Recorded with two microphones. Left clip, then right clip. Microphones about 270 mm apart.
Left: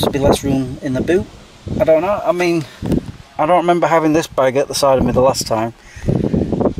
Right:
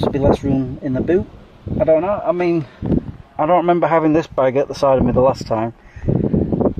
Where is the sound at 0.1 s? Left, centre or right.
Centre.